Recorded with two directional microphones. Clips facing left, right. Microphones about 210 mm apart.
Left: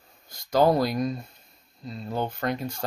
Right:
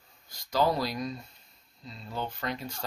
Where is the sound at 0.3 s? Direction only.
50° left (ahead or behind).